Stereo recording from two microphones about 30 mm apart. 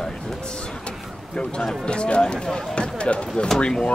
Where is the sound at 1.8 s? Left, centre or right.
Left.